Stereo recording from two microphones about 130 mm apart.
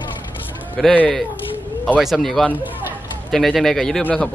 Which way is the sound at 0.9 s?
5° left (ahead or behind).